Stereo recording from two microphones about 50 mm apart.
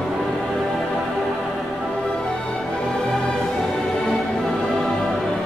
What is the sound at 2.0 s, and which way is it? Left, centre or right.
Music, centre.